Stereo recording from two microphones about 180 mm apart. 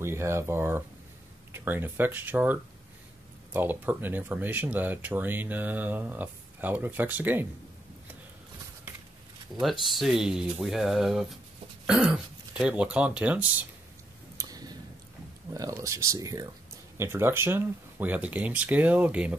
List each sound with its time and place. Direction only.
0.0 s speech: 15° right (ahead or behind)
9.6 s speech: centre (ahead or behind)
14.3 s a sound: 20° right (ahead or behind)
15.5 s speech: 20° right (ahead or behind)